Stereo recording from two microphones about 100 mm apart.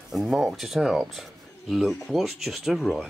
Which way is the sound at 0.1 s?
Centre (ahead or behind).